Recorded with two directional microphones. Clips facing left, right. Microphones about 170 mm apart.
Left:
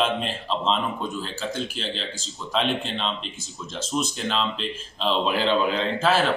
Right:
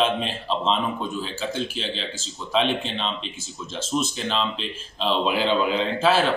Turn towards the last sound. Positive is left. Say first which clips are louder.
# right 2 dB
turn(degrees=-5)  # may be behind; listen again after turning